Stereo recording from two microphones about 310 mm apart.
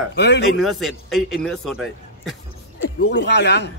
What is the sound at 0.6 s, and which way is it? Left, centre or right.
A man's voice, centre.